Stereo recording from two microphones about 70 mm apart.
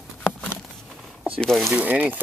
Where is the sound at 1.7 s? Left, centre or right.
Right.